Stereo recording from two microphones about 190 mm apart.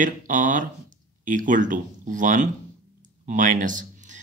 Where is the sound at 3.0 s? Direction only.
45° right (ahead or behind).